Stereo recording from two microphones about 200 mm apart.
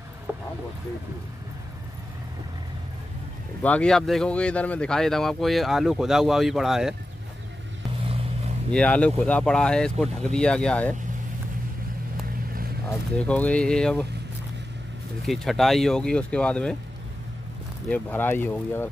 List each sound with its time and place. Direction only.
0.3 s a sound: 10° right (ahead or behind)
3.6 s speech: 5° left (ahead or behind)
8.0 s vehicle: 30° right (ahead or behind)
8.7 s speech: 5° left (ahead or behind)
13.2 s speech: 5° left (ahead or behind)
15.2 s speech: centre (ahead or behind)
17.8 s speech: 10° left (ahead or behind)